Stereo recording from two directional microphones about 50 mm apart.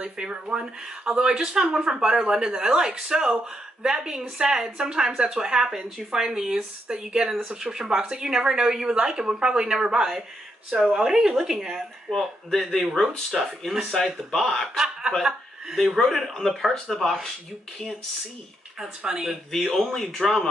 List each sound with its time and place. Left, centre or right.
0.0 s speech: centre
14.8 s speech: centre
15.7 s speech: centre
18.8 s speech: centre
19.5 s speech: centre